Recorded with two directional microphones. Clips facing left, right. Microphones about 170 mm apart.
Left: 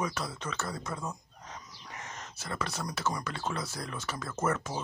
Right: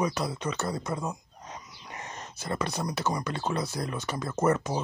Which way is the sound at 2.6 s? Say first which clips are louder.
Right 3 dB; 20° right (ahead or behind).